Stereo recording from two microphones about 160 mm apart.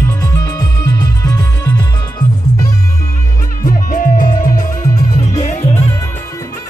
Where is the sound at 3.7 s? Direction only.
60° left (ahead or behind).